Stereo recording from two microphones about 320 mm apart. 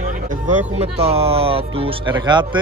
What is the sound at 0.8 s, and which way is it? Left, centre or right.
Speech, centre.